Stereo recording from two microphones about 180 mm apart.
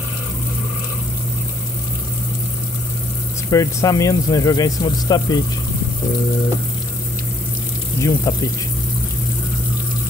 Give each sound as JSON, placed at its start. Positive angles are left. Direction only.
{"t": 3.4, "sound": "speech", "side_deg": 20}
{"t": 8.0, "sound": "speech", "side_deg": 20}